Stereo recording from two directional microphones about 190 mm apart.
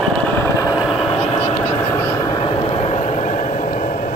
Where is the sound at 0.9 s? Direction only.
30° left (ahead or behind).